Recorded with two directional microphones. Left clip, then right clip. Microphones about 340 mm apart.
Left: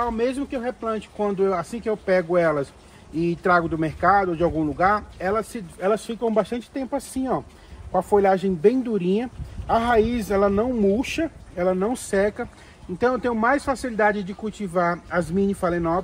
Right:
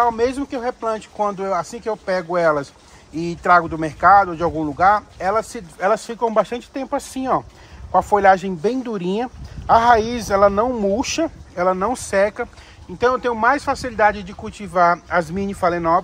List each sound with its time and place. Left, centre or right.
0.0 s speech: centre